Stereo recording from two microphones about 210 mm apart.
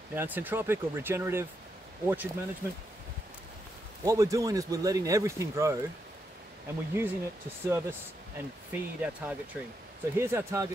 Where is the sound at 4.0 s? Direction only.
15° right (ahead or behind).